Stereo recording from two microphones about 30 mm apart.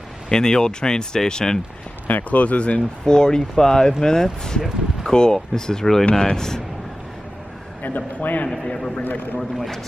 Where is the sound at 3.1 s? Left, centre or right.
Left.